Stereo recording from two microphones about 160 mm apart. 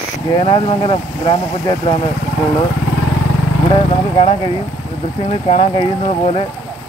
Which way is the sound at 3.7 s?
35° left (ahead or behind).